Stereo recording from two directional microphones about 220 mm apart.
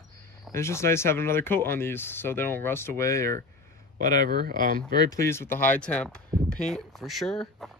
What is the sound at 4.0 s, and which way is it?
Speech, 40° right (ahead or behind).